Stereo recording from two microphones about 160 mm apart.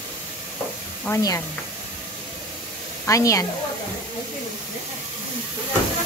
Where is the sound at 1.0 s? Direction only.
20° left (ahead or behind).